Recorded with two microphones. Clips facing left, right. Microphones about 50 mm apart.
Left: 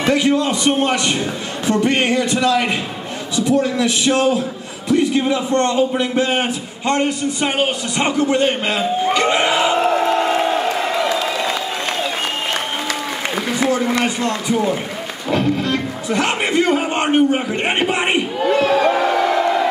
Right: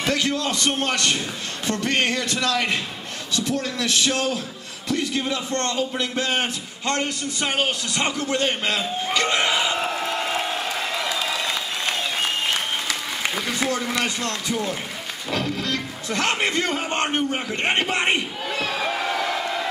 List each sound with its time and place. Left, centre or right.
0.0 s a man's voice: centre
13.5 s speech: centre